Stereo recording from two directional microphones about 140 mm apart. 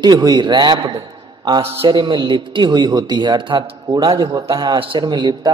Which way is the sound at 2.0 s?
35° right (ahead or behind).